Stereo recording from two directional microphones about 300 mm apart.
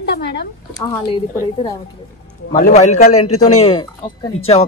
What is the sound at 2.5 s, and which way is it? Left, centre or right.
Speech, left.